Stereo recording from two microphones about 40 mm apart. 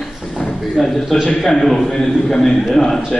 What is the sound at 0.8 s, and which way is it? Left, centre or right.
A man's voice, centre.